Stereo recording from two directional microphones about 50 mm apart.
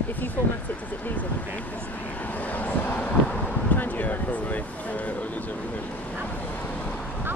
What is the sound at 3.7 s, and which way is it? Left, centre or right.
Speech, left.